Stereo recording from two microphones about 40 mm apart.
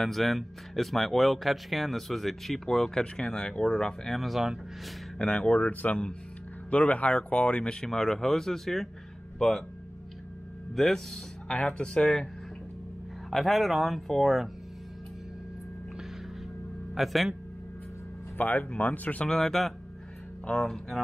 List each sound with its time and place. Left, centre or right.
0.0 s speech: centre
3.0 s speech: centre
4.1 s speech: centre
5.2 s speech: left
5.7 s speech: left
7.8 s speech: centre
10.7 s speech: centre
11.4 s speech: centre
13.3 s speech: centre
16.9 s a man's voice: centre
18.4 s speech: left
19.2 s speech: centre
20.4 s speech: left